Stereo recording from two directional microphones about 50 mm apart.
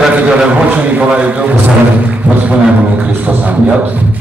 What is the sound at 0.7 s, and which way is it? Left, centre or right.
A man's voice, right.